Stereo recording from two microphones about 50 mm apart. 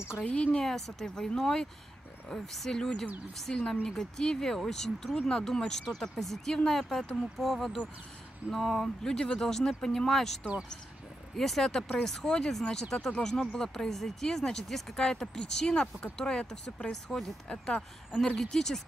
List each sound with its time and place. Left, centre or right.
0.2 s a woman's voice: left
0.7 s speech: centre
18.3 s speech: centre